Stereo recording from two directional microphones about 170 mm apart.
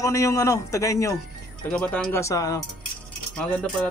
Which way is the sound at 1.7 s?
5° left (ahead or behind).